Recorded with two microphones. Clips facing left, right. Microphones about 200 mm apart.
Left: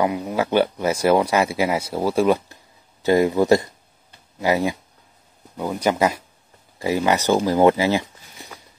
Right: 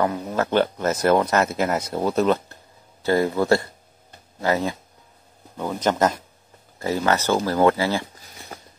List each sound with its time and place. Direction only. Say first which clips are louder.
0.0 s speech: left 2 dB; 10° left (ahead or behind)